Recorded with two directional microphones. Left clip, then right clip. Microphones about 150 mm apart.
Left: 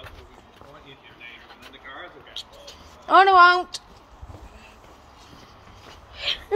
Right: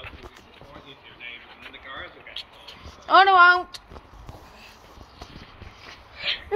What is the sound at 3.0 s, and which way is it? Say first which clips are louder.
Speech: left 1 dB; 45° left (ahead or behind).